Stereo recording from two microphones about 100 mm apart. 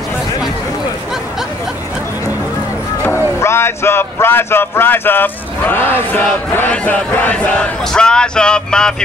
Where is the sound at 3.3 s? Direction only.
25° left (ahead or behind).